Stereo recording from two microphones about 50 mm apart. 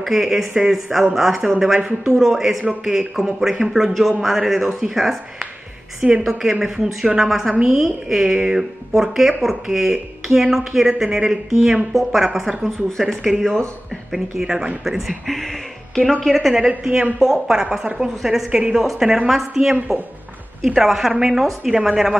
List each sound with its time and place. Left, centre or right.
0.0 s speech: centre
6.0 s a woman's voice: right
6.5 s speech: centre
14.1 s speech: centre
14.9 s speech: centre
16.6 s speech: centre